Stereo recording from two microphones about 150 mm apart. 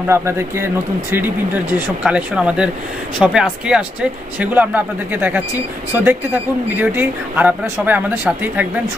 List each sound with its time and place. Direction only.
0.1 s speech: 15° right (ahead or behind)